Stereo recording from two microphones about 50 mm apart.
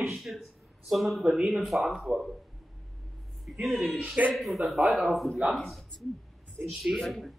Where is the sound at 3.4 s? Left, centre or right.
Centre.